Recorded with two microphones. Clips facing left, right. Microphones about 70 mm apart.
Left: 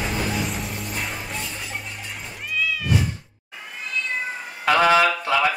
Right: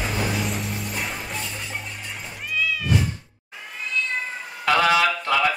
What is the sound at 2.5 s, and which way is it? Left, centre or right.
Cat, centre.